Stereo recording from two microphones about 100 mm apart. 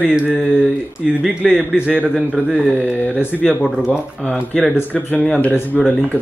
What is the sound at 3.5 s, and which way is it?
Speech, 10° right (ahead or behind).